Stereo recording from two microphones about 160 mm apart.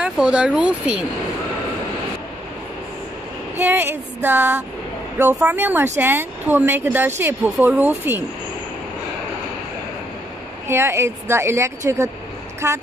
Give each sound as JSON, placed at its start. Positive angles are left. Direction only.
{"t": 0.0, "sound": "speech", "side_deg": -5}
{"t": 3.5, "sound": "a woman's voice", "side_deg": -15}
{"t": 10.7, "sound": "a woman's voice", "side_deg": -15}